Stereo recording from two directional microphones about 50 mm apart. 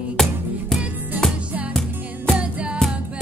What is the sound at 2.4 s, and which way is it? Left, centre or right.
Music, right.